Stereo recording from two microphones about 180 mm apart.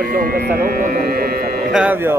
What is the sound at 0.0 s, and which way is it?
Speech, 55° right (ahead or behind).